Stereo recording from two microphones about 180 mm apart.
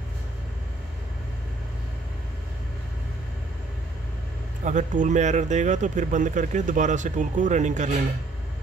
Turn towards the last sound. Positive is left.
turn(degrees=-40)  # may be behind; listen again after turning